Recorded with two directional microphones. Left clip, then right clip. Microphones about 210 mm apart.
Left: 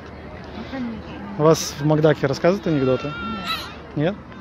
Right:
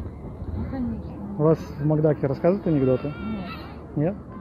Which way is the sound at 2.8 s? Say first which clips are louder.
Left 2 dB; 55° left (ahead or behind).